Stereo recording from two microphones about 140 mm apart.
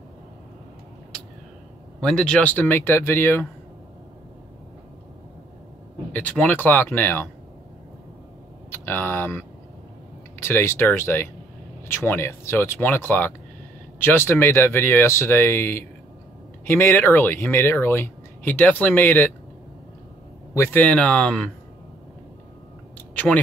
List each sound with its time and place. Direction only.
2.0 s speech: 5° left (ahead or behind)
6.1 s speech: 10° left (ahead or behind)
8.6 s speech: 15° left (ahead or behind)
20.5 s speech: 20° left (ahead or behind)
20.8 s speech: 10° left (ahead or behind)
23.1 s tick-tock: 10° left (ahead or behind)